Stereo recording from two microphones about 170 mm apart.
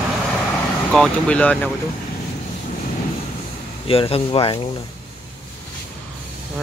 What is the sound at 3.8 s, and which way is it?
Speech, 35° left (ahead or behind).